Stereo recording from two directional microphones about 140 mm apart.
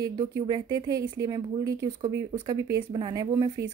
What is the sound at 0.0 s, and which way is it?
A woman's voice, 25° right (ahead or behind).